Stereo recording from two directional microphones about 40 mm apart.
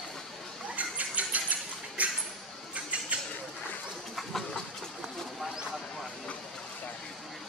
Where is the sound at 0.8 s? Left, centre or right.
Right.